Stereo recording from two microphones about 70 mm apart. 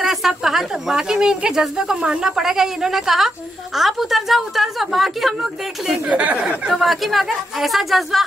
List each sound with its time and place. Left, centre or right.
0.0 s speech: centre
6.0 s speech: centre
6.7 s speech: centre